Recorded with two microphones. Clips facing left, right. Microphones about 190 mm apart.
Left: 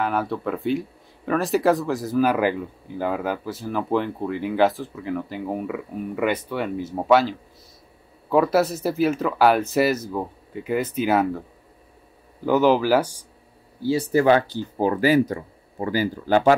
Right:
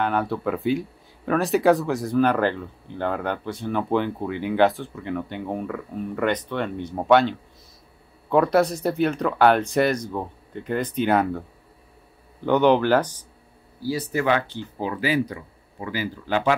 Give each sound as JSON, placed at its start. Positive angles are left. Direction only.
{"t": 0.0, "sound": "speech", "side_deg": 0}
{"t": 12.4, "sound": "speech", "side_deg": 5}
{"t": 14.1, "sound": "speech", "side_deg": 35}